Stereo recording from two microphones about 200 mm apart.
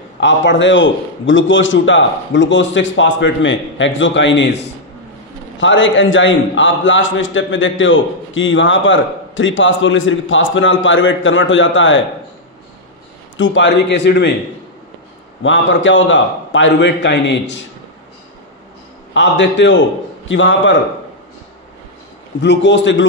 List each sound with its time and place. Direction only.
0.2 s a man's voice: 65° left (ahead or behind)
13.4 s a man's voice: 65° left (ahead or behind)
15.4 s a man's voice: 70° left (ahead or behind)
19.1 s a man's voice: 65° left (ahead or behind)
22.4 s a man's voice: 60° left (ahead or behind)